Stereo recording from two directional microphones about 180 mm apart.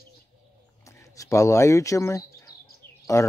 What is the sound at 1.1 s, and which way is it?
Speech, 20° left (ahead or behind).